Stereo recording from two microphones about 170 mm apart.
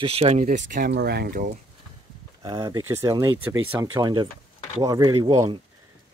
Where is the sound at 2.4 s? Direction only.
20° right (ahead or behind).